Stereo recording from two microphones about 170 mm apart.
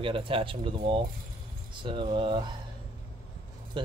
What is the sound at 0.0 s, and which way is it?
Speech, 30° right (ahead or behind).